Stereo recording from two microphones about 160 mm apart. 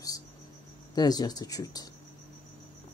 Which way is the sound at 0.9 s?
25° left (ahead or behind).